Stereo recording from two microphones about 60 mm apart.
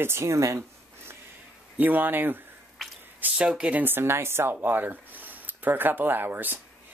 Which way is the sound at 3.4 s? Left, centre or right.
Centre.